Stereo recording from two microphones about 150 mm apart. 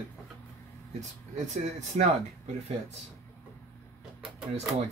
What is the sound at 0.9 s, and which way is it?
Speech, 50° right (ahead or behind).